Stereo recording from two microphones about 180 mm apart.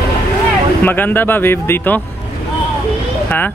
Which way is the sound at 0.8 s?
10° left (ahead or behind).